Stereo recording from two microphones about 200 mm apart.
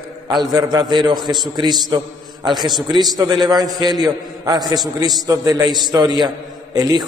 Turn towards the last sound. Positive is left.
turn(degrees=-20)  # may be behind; listen again after turning